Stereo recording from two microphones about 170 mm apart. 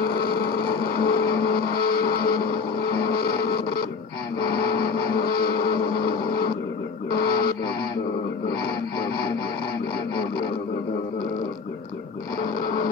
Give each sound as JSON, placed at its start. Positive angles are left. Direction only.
{"t": 0.0, "sound": "vehicle", "side_deg": 65}
{"t": 7.1, "sound": "music", "side_deg": 65}
{"t": 12.6, "sound": "music", "side_deg": 55}